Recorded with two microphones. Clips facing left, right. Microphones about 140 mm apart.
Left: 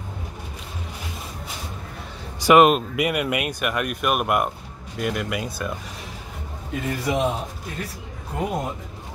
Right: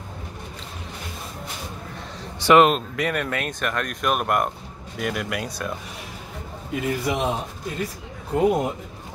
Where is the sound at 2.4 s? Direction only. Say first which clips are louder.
Left 1 dB; 10° left (ahead or behind).